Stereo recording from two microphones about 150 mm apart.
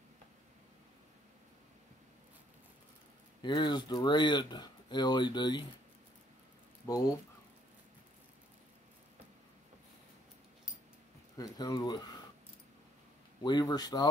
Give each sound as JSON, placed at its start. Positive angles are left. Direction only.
{"t": 3.4, "sound": "speech", "side_deg": 30}
{"t": 11.3, "sound": "speech", "side_deg": 25}
{"t": 13.4, "sound": "speech", "side_deg": 30}